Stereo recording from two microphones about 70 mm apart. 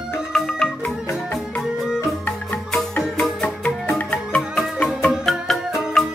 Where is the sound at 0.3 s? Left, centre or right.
Centre.